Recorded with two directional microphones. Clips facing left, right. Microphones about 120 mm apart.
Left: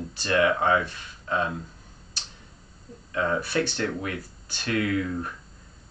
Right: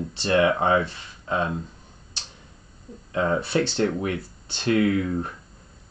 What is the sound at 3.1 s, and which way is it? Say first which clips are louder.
Speech: right 3 dB; 25° right (ahead or behind).